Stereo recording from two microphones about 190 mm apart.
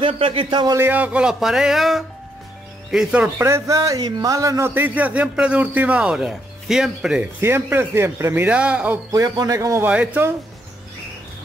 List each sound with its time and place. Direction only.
0.0 s a man's voice: 30° right (ahead or behind)
0.7 s a man's voice: 10° right (ahead or behind)